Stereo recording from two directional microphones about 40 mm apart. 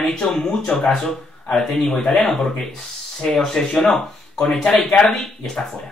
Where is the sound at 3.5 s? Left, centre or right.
Centre.